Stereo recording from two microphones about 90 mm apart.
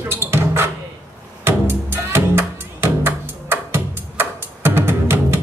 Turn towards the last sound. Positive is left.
turn(degrees=-25)  # may be behind; listen again after turning